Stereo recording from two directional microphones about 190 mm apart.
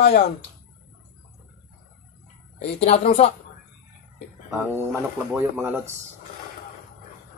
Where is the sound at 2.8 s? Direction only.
30° left (ahead or behind).